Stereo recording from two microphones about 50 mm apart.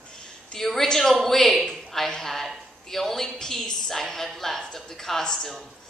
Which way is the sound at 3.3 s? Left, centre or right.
Centre.